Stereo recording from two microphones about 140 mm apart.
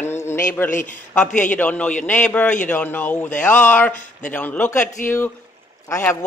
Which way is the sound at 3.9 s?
65° left (ahead or behind).